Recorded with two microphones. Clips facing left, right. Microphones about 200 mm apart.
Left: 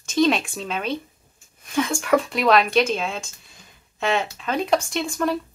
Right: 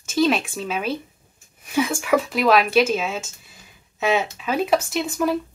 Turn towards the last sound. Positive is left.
turn(degrees=-5)  # may be behind; listen again after turning